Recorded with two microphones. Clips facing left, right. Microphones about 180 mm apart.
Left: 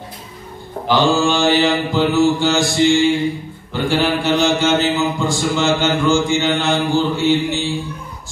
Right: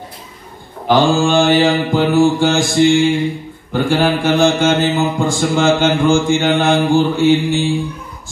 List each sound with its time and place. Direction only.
0.8 s mantra: 50° right (ahead or behind)